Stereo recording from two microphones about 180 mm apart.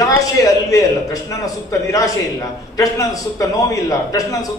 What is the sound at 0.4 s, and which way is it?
A man's voice, 20° left (ahead or behind).